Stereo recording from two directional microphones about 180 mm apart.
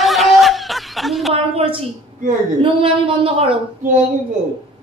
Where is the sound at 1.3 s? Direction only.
30° right (ahead or behind).